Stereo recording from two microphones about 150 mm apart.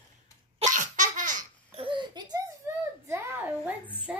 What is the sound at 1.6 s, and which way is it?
Laughter, 35° right (ahead or behind).